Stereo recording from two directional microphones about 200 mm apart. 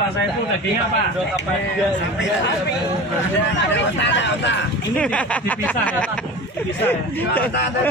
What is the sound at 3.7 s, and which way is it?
Speech, 60° left (ahead or behind).